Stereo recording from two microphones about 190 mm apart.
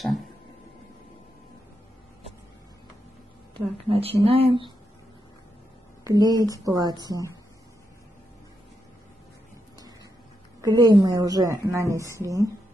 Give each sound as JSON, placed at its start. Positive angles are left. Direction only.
{"t": 3.5, "sound": "speech", "side_deg": -30}
{"t": 6.0, "sound": "speech", "side_deg": -20}
{"t": 10.6, "sound": "a woman's voice", "side_deg": -20}